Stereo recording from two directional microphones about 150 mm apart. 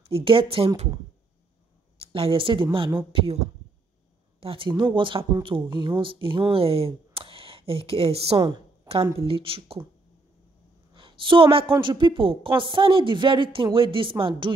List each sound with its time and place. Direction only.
0.1 s speech: 35° right (ahead or behind)
2.0 s speech: 40° right (ahead or behind)
4.4 s speech: 35° right (ahead or behind)
11.0 s a woman's voice: 35° right (ahead or behind)